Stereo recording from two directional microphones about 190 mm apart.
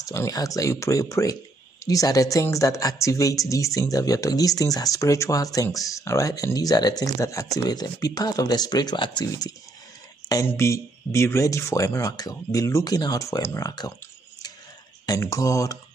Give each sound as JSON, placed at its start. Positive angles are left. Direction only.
{"t": 0.0, "sound": "speech", "side_deg": 15}
{"t": 15.0, "sound": "speech", "side_deg": 15}